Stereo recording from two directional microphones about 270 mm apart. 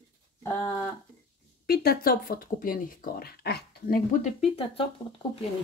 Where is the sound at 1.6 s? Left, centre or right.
Left.